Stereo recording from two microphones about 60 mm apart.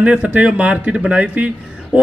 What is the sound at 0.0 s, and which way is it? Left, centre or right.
Speech, right.